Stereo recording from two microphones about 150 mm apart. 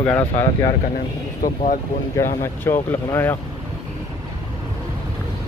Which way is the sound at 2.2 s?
15° left (ahead or behind).